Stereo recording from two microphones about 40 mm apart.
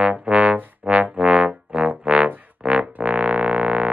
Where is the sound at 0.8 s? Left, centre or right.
Right.